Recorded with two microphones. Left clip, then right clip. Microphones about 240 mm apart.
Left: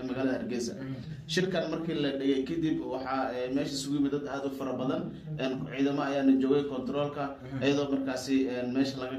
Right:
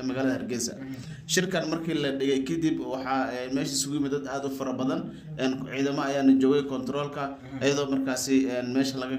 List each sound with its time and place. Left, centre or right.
0.1 s a man's voice: right